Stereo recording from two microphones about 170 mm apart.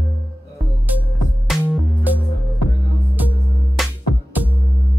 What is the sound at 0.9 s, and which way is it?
Music, 10° right (ahead or behind).